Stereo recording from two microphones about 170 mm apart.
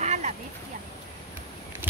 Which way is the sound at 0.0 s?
40° right (ahead or behind).